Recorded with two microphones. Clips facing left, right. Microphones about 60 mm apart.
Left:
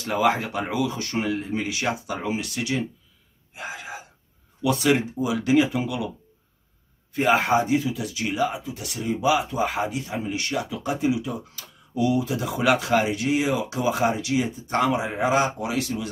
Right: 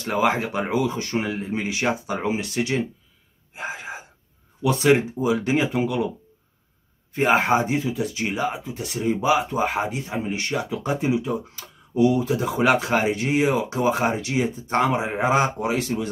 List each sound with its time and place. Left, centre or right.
0.0 s speech: right
3.5 s gasp: right
4.6 s speech: right
7.2 s speech: right